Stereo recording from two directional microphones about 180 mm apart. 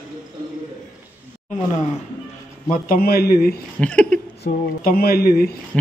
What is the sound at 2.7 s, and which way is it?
Speech, 55° left (ahead or behind).